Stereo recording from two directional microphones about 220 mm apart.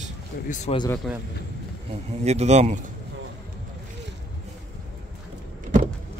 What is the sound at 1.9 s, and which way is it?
Speech, 30° right (ahead or behind).